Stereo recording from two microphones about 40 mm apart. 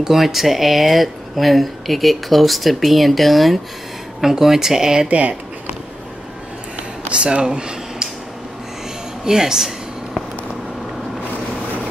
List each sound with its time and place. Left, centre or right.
0.0 s speech: centre
4.2 s speech: centre
5.0 s speech: right
7.1 s speech: right
9.2 s speech: centre